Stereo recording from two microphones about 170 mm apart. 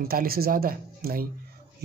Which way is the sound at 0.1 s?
60° right (ahead or behind).